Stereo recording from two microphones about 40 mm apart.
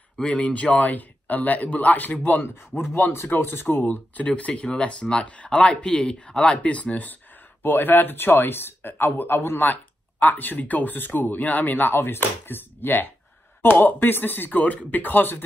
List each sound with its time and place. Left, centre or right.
0.3 s speech: left
2.8 s speech: left
4.2 s speech: left
6.6 s speech: left
7.6 s speech: left
9.6 s speech: left
11.9 s speech: left